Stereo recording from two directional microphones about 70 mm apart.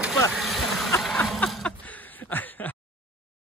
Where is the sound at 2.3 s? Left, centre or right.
Left.